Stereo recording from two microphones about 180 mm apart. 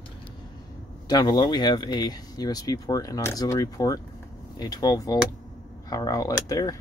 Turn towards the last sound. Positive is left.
turn(degrees=20)  # may be behind; listen again after turning